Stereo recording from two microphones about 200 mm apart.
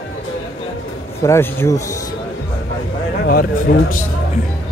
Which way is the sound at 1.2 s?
15° left (ahead or behind).